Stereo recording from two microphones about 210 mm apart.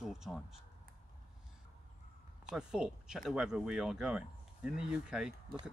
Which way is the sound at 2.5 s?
5° right (ahead or behind).